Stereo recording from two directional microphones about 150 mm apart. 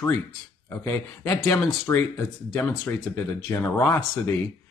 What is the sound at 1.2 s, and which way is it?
Speech, 20° left (ahead or behind).